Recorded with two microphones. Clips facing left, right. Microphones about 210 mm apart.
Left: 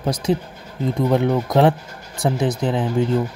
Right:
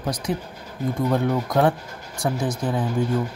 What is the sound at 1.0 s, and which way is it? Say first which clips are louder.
Speech: left 4 dB; 20° left (ahead or behind).